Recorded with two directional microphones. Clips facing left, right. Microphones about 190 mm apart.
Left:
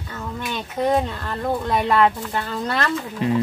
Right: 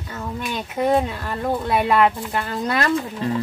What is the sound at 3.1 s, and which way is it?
Speech, 15° left (ahead or behind).